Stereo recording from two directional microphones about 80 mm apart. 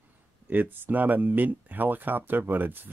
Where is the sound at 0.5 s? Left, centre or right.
Right.